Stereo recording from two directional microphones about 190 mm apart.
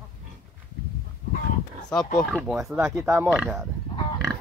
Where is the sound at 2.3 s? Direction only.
Centre (ahead or behind).